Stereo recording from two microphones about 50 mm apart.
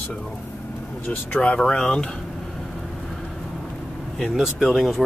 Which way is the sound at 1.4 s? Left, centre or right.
Centre.